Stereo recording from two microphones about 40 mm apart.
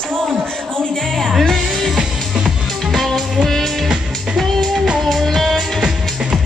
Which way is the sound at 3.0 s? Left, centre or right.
Centre.